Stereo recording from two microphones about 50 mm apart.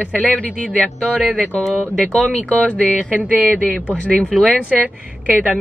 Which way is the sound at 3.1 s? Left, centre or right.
Right.